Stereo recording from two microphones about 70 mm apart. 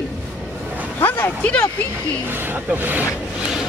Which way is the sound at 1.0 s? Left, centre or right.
Left.